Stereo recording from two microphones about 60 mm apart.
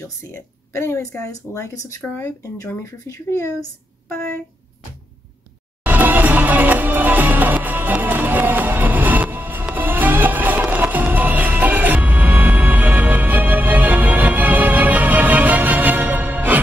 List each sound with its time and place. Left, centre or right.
0.3 s speech: left
2.0 s speech: left
3.3 s speech: left
5.9 s music: right